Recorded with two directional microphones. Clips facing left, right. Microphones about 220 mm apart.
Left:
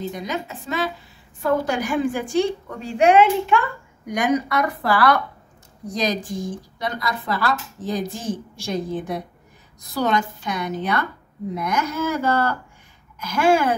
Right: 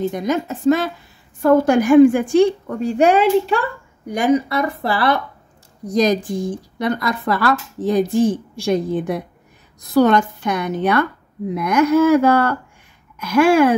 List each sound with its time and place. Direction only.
0.0 s a woman's voice: 50° right (ahead or behind); by 5.2 s 25° right (ahead or behind)
5.9 s speech: 45° right (ahead or behind)